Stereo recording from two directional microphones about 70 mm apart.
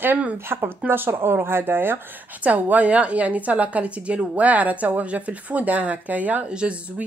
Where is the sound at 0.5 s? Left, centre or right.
Right.